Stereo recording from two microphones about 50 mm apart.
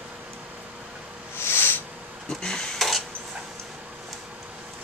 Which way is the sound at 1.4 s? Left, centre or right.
Left.